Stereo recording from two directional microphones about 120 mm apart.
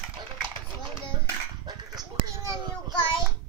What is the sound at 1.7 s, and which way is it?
Dog, 35° right (ahead or behind).